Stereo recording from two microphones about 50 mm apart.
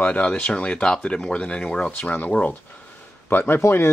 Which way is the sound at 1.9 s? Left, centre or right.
Left.